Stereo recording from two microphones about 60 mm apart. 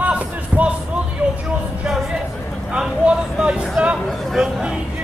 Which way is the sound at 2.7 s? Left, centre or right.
Centre.